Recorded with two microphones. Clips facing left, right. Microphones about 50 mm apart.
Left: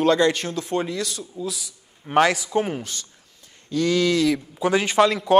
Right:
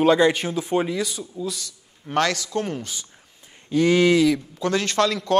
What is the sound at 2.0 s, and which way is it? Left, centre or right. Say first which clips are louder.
Speech: left 4 dB; centre.